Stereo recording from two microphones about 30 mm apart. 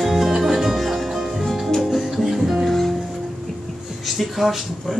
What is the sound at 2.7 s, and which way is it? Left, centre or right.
Music, centre.